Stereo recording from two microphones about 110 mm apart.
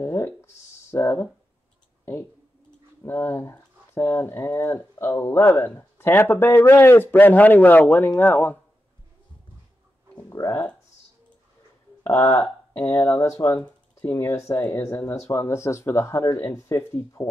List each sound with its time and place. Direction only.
0.0 s a sound: 20° left (ahead or behind)
0.9 s speech: 20° left (ahead or behind)
3.0 s speech: 20° left (ahead or behind)
10.5 s speech: 15° left (ahead or behind)
12.0 s speech: 25° left (ahead or behind)